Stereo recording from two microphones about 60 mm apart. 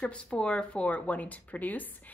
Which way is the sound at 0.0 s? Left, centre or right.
Centre.